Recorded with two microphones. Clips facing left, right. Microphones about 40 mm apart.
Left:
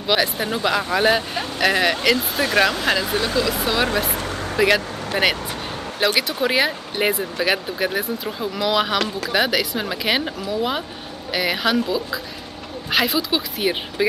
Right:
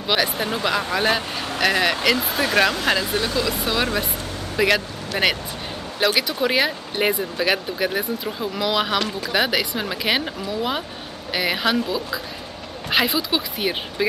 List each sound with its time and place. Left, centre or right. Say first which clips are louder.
0.1 s speech: left 1 dB; centre